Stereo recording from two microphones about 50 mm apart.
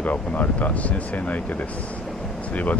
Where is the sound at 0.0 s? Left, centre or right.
Left.